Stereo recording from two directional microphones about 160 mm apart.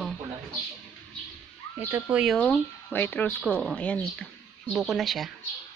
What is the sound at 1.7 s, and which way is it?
Speech, 10° right (ahead or behind).